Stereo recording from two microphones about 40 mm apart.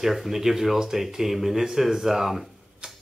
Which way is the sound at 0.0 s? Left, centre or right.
Centre.